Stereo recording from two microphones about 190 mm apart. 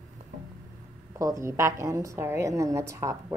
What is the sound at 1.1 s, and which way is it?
A woman's voice, 15° right (ahead or behind).